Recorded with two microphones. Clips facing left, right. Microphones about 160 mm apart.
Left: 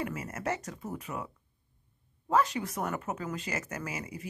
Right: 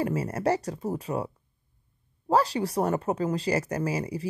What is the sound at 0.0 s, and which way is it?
Speech, 35° right (ahead or behind).